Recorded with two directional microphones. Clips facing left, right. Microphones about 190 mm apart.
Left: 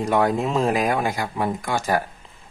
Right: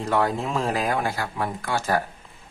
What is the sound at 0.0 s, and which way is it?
Speech, 15° left (ahead or behind).